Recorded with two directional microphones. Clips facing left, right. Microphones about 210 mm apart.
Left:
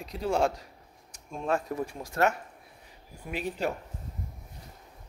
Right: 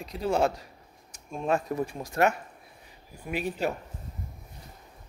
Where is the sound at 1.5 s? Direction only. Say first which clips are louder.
Right 2 dB; 20° right (ahead or behind).